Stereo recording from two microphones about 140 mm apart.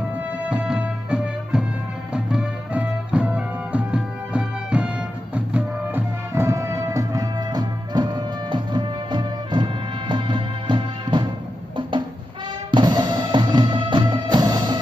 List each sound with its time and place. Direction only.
0.4 s music: 10° right (ahead or behind); by 11.2 s 35° right (ahead or behind)
12.7 s music: 30° right (ahead or behind)